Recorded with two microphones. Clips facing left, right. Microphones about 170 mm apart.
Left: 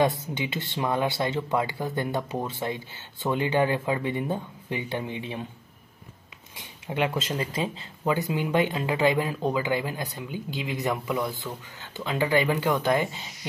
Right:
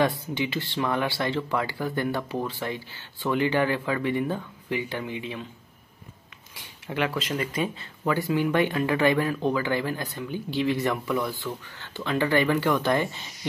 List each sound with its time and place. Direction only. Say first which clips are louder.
0.0 s speech: even; 20° left (ahead or behind)
6.5 s speech: even; 20° left (ahead or behind)